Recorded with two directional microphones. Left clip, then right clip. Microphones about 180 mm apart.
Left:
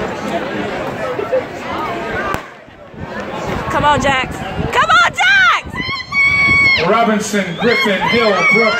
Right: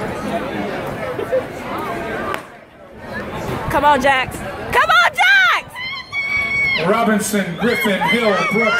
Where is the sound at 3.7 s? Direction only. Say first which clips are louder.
Even; 25° right (ahead or behind).